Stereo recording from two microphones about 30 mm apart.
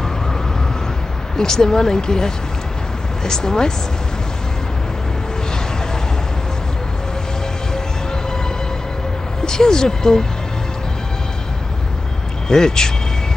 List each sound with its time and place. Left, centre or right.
1.3 s speech: left
9.4 s speech: left
12.4 s speech: left